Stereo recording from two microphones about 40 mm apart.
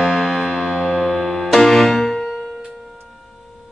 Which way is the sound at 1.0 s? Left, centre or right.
Centre.